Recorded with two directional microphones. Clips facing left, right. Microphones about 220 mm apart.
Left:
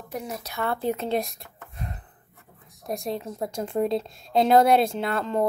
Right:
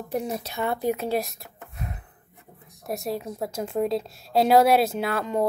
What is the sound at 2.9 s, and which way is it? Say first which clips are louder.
A woman's voice: even; 5° right (ahead or behind).